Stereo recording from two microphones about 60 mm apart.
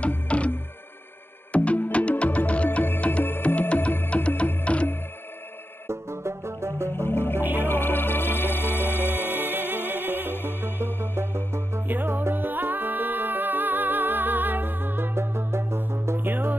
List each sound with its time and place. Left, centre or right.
0.3 s music: left
1.5 s music: left
5.9 s music: right
6.9 s music: left
9.5 s music: right
10.3 s music: left
11.1 s music: right
11.9 s music: right
16.2 s music: right